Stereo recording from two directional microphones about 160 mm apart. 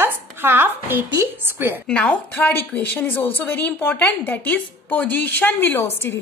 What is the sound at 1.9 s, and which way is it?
A woman's voice, 10° left (ahead or behind).